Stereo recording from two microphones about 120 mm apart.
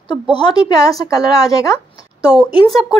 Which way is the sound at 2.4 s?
Centre (ahead or behind).